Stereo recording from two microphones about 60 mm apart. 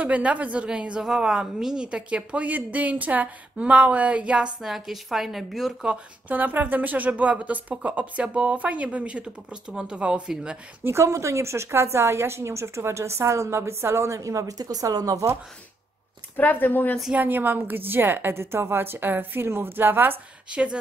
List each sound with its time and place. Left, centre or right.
0.0 s a woman's voice: right
4.6 s a woman's voice: centre
6.2 s a woman's voice: right
10.8 s a woman's voice: right
11.1 s a woman's voice: right
16.3 s speech: left
17.2 s a woman's voice: right
20.4 s speech: centre